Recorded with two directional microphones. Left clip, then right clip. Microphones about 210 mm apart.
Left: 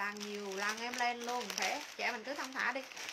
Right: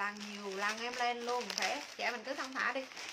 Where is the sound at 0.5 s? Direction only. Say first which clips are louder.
Right 1 dB; 5° right (ahead or behind).